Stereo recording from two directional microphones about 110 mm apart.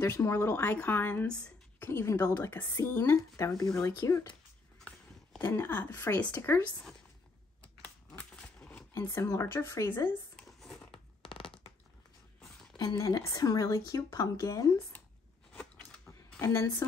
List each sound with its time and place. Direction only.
0.0 s speech: 20° left (ahead or behind)
1.9 s a woman's voice: 20° left (ahead or behind)
4.7 s walk: 5° left (ahead or behind)
5.4 s a woman's voice: 25° left (ahead or behind)
8.2 s a sound: 10° left (ahead or behind)
8.9 s a woman's voice: 25° left (ahead or behind)
10.3 s crumpling: 5° left (ahead or behind)
10.9 s a sound: 50° left (ahead or behind)
12.7 s speech: 35° left (ahead or behind)
15.5 s a sound: 15° left (ahead or behind)
16.3 s speech: 30° left (ahead or behind)